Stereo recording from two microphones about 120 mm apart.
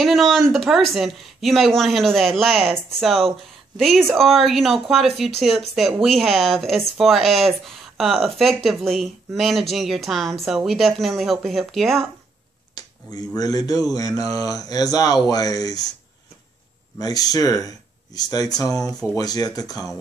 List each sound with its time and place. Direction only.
0.0 s speech: centre (ahead or behind)
12.7 s speech: 35° left (ahead or behind)
17.0 s speech: 30° left (ahead or behind)